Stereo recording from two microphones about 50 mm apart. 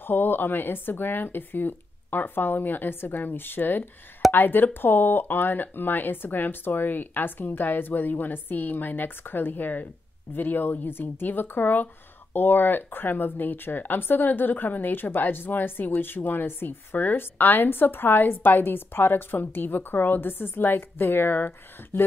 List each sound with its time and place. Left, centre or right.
0.0 s speech: left